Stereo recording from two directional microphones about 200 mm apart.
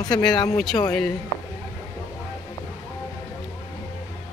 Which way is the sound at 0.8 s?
5° left (ahead or behind).